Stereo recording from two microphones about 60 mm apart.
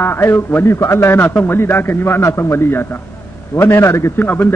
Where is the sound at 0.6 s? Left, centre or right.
Left.